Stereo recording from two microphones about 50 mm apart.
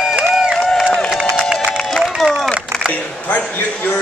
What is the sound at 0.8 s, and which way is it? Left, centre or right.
Run, centre.